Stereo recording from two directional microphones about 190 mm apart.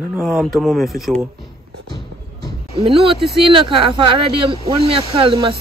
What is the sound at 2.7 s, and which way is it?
Speech, 30° right (ahead or behind).